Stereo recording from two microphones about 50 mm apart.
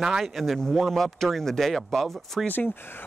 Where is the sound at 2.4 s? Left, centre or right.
Left.